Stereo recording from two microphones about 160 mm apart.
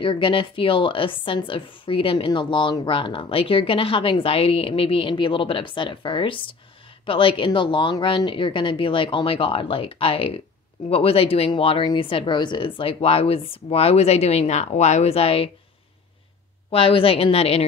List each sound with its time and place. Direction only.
0.0 s a woman's voice: 30° left (ahead or behind)
16.7 s a woman's voice: 35° left (ahead or behind)